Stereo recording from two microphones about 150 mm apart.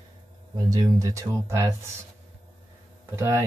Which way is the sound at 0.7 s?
25° right (ahead or behind).